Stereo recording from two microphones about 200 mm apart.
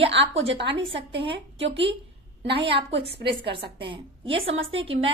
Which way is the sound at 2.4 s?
60° right (ahead or behind).